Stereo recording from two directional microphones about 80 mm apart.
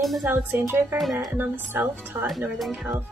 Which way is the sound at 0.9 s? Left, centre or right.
Centre.